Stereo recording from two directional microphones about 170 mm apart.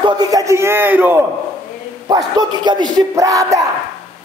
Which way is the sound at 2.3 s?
25° right (ahead or behind).